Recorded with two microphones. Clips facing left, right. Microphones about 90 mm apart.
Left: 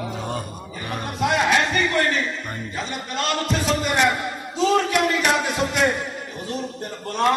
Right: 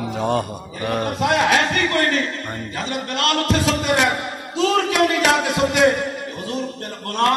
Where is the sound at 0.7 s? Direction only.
60° right (ahead or behind).